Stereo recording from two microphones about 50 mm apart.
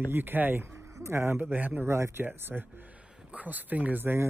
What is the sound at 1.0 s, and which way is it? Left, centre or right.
Speech, right.